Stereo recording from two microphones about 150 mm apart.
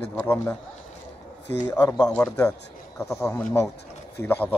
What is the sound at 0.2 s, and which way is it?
Speech, 15° left (ahead or behind).